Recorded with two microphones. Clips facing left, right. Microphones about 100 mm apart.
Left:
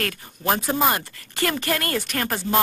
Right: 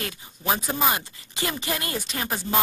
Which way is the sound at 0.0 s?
50° left (ahead or behind).